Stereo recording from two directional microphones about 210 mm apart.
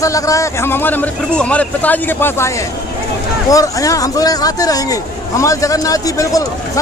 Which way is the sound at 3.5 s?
15° left (ahead or behind).